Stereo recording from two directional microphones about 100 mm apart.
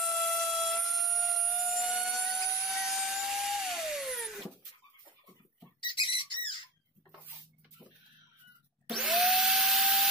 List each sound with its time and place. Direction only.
0.0 s a sound: centre (ahead or behind)
5.8 s squawk: 55° left (ahead or behind)
8.9 s vacuum cleaner: 5° right (ahead or behind)